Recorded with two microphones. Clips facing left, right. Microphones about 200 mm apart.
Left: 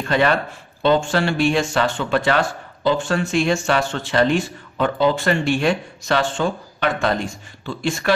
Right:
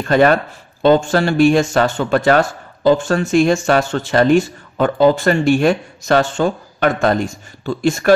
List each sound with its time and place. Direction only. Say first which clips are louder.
0.0 s speech: right 6 dB; 45° right (ahead or behind)